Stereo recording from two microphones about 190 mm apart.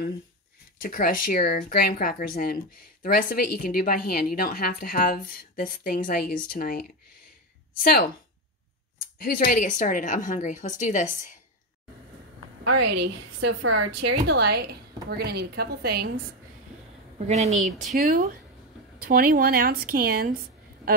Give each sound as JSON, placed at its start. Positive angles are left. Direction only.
{"t": 0.7, "sound": "speech", "side_deg": 50}
{"t": 9.2, "sound": "speech", "side_deg": 50}
{"t": 12.8, "sound": "a woman's voice", "side_deg": -65}
{"t": 14.2, "sound": "a woman's voice", "side_deg": -60}
{"t": 17.3, "sound": "a woman's voice", "side_deg": -35}